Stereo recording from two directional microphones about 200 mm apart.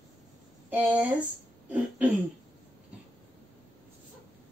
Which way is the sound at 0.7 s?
10° right (ahead or behind).